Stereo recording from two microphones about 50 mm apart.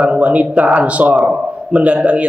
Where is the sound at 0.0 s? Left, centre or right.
Right.